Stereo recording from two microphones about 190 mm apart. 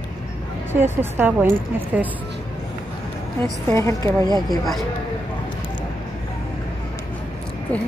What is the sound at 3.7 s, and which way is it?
Speech, 15° left (ahead or behind).